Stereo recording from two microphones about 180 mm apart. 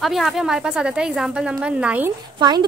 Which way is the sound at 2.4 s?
20° right (ahead or behind).